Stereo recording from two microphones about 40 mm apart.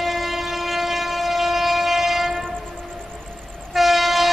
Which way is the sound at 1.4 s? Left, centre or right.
Centre.